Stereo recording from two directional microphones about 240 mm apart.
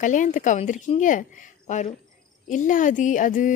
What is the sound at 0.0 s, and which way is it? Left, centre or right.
Speech, left.